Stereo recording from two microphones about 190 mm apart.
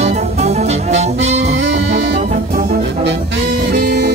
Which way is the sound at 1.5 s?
70° right (ahead or behind).